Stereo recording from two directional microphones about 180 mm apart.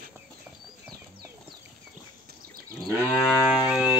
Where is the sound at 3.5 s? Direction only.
Centre (ahead or behind).